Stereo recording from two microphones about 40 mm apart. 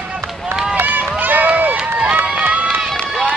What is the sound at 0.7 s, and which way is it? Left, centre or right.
Run, right.